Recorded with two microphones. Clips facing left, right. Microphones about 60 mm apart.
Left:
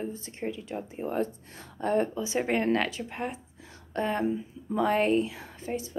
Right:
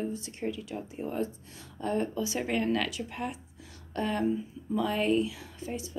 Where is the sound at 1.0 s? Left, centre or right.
Left.